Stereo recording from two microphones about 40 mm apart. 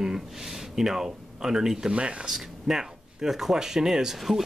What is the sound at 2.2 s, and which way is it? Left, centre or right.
Speech, centre.